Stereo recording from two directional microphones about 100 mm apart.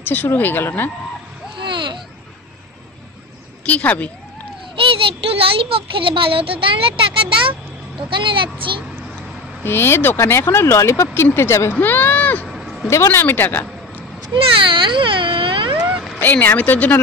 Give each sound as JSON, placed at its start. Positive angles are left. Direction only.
{"t": 0.1, "sound": "speech", "side_deg": 20}
{"t": 1.6, "sound": "a sound", "side_deg": -55}
{"t": 3.6, "sound": "speech", "side_deg": 15}
{"t": 4.7, "sound": "a child's voice", "side_deg": -65}
{"t": 9.6, "sound": "speech", "side_deg": 25}
{"t": 12.4, "sound": "a sound", "side_deg": 0}
{"t": 12.9, "sound": "speech", "side_deg": 25}
{"t": 14.3, "sound": "speech", "side_deg": -55}
{"t": 15.7, "sound": "a sound", "side_deg": -15}
{"t": 16.2, "sound": "speech", "side_deg": 20}